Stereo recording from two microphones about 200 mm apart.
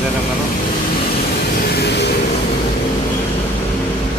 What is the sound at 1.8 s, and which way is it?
Vehicle, 55° left (ahead or behind).